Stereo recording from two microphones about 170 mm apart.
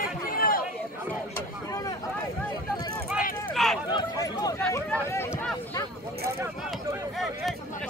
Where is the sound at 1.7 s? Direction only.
20° left (ahead or behind).